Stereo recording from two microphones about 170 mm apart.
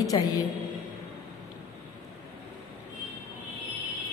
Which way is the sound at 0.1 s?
25° left (ahead or behind).